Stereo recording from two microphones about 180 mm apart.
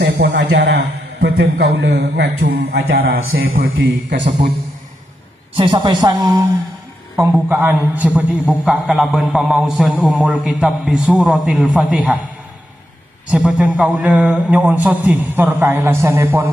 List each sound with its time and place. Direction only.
0.0 s a man's voice: 65° right (ahead or behind)
3.6 s a man's voice: 90° right
5.6 s a man's voice: 25° right (ahead or behind); by 12.2 s centre (ahead or behind)
13.3 s a man's voice: 5° right (ahead or behind)